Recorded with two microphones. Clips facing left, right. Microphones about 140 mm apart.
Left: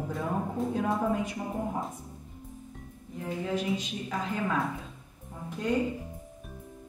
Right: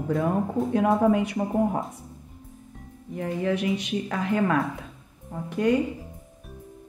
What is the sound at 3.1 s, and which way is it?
A woman's voice, 70° right (ahead or behind).